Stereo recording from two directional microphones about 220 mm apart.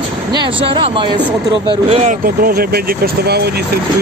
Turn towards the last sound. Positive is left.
turn(degrees=-45)  # may be behind; listen again after turning